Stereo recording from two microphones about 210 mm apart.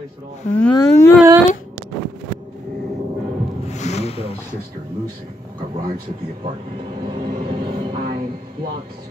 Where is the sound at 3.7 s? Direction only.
30° left (ahead or behind).